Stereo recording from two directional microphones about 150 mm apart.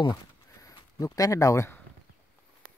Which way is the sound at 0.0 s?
25° left (ahead or behind).